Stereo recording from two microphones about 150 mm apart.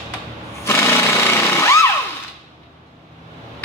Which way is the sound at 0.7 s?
15° left (ahead or behind).